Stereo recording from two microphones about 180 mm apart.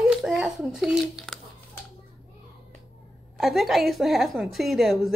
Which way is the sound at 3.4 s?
Centre (ahead or behind).